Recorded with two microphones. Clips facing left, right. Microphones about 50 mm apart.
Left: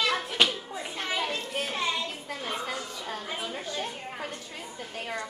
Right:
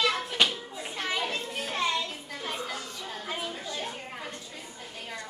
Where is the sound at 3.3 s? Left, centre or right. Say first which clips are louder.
Right 4 dB; centre.